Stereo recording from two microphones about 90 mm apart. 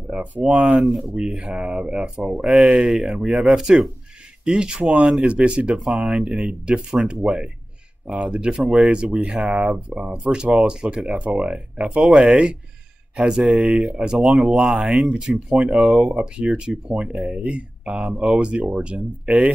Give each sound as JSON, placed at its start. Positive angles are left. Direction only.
{"t": 0.1, "sound": "speech", "side_deg": -15}
{"t": 0.7, "sound": "speech", "side_deg": 0}